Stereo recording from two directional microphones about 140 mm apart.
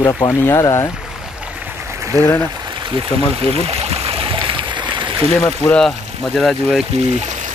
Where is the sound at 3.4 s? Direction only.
45° right (ahead or behind).